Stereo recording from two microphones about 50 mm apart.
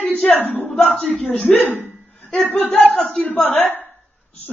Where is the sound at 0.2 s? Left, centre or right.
Left.